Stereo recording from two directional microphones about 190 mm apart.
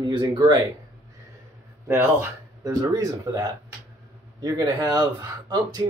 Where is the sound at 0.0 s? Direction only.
25° right (ahead or behind).